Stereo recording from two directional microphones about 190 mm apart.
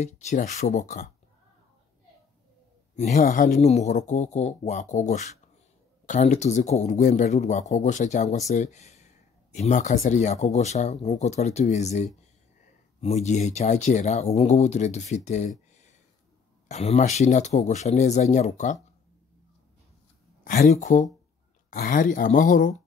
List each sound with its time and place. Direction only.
0.0 s a man's voice: 40° left (ahead or behind)
3.0 s a man's voice: 35° left (ahead or behind)
16.6 s a man's voice: 35° left (ahead or behind)
20.4 s a man's voice: 40° left (ahead or behind)